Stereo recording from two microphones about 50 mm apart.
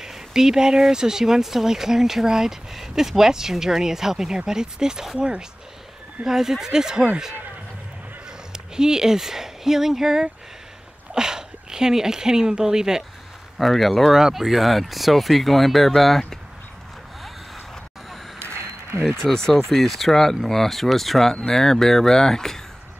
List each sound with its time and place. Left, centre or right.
0.0 s speech: centre
8.7 s speech: centre
13.6 s speech: centre
14.1 s speech: centre
18.4 s a sound: right
19.1 s speech: centre